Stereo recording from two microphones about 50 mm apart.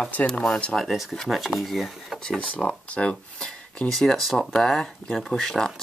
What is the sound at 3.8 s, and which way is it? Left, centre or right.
Speech, centre.